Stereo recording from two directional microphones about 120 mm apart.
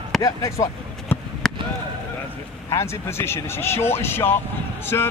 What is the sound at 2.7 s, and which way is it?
Speech, 20° left (ahead or behind).